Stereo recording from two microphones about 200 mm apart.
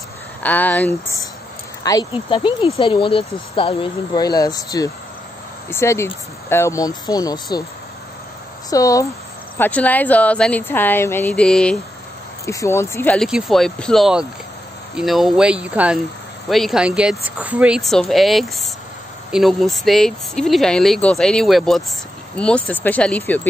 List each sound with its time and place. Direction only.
0.4 s speech: 10° left (ahead or behind)
8.6 s speech: 15° left (ahead or behind)